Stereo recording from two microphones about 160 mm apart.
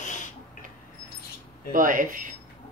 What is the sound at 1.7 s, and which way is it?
Speech, 60° right (ahead or behind).